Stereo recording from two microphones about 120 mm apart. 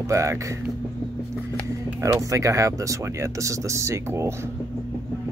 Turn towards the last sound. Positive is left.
turn(degrees=-25)  # may be behind; listen again after turning